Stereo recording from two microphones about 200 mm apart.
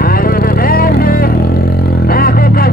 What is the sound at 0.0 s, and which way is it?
Vehicle, 45° left (ahead or behind).